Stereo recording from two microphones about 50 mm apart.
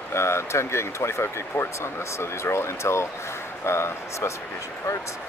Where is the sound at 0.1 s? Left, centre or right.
Left.